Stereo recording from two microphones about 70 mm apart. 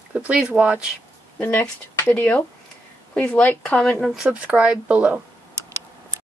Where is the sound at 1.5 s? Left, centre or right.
Left.